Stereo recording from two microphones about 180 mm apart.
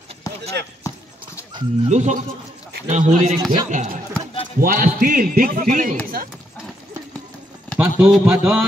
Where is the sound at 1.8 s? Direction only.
40° right (ahead or behind).